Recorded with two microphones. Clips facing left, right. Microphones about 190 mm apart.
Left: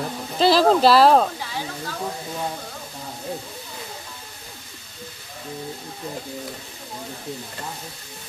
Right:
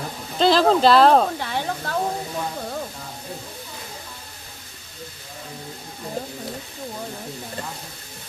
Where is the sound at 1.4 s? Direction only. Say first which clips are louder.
Right 4 dB; 60° right (ahead or behind).